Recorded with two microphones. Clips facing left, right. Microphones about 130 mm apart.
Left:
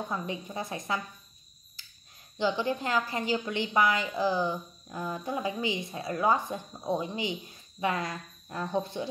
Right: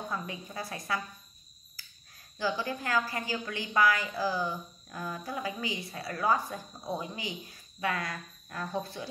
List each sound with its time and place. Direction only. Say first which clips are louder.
0.1 s a woman's voice: left 3 dB; 25° left (ahead or behind)
1.8 s finger snapping: right 1 dB; 25° left (ahead or behind)
2.3 s a woman's voice: left 4 dB; 20° left (ahead or behind)